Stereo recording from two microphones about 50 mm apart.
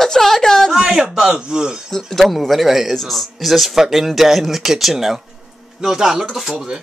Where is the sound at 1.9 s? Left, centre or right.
Centre.